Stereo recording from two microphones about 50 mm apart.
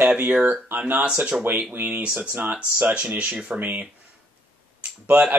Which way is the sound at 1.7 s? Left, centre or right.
Right.